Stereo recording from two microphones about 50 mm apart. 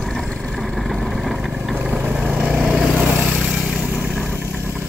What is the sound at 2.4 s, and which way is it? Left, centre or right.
Vehicle, right.